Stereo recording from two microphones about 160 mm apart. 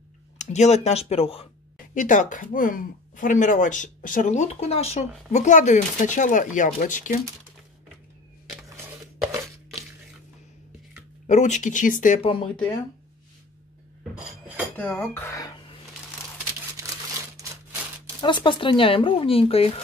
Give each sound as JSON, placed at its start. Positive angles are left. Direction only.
{"t": 0.4, "sound": "speech", "side_deg": 45}
{"t": 2.0, "sound": "speech", "side_deg": 55}
{"t": 8.5, "sound": "a sound", "side_deg": -20}
{"t": 11.2, "sound": "speech", "side_deg": 45}
{"t": 12.2, "sound": "speech", "side_deg": 35}
{"t": 14.8, "sound": "speech", "side_deg": 15}
{"t": 18.2, "sound": "speech", "side_deg": 30}